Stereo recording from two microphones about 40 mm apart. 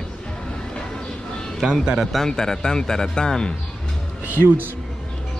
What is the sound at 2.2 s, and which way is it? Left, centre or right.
Speech, centre.